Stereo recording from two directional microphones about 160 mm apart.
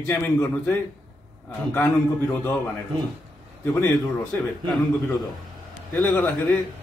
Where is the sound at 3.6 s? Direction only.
15° left (ahead or behind).